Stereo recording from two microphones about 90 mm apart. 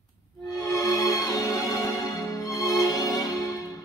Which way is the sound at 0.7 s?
40° left (ahead or behind).